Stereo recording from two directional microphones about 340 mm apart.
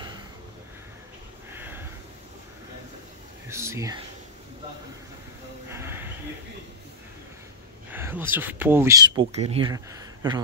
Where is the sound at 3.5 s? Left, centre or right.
Centre.